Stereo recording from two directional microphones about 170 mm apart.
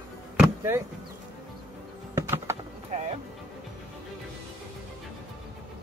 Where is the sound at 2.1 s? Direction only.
15° right (ahead or behind).